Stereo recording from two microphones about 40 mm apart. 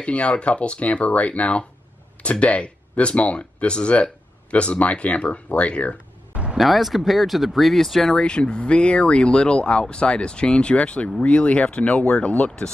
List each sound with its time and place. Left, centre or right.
0.0 s speech: left
6.6 s speech: centre
8.1 s speech: left
12.4 s speech: left